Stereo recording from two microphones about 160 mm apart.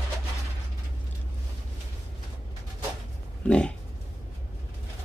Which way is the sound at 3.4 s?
5° left (ahead or behind).